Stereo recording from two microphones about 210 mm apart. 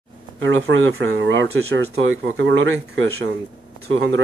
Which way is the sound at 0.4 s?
65° right (ahead or behind).